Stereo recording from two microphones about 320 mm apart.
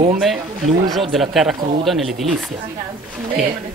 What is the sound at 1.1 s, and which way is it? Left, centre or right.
Speech, centre.